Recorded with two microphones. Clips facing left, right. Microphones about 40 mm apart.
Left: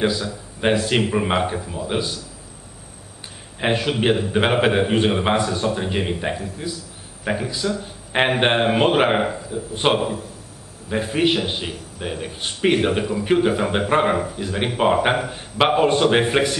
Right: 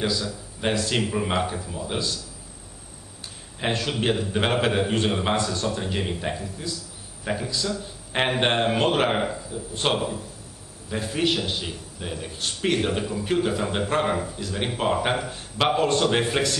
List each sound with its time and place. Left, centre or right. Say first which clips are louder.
0.0 s a man's voice: left 5 dB; left
3.5 s a man's voice: left 5 dB; left